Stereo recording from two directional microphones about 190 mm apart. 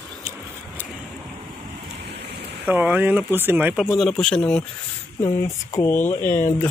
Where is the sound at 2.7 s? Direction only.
10° right (ahead or behind).